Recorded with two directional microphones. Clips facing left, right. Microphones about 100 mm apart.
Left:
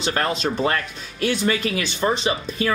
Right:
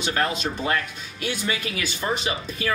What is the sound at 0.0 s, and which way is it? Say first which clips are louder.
Speech: left 2 dB; 30° left (ahead or behind).